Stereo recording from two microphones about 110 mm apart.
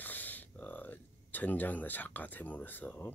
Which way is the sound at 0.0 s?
15° left (ahead or behind).